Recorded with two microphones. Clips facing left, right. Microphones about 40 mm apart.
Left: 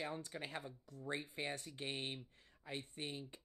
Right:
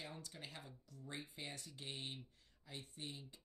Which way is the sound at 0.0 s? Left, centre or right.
Left.